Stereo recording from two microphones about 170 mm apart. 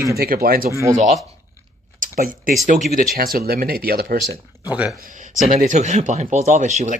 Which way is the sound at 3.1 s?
60° right (ahead or behind).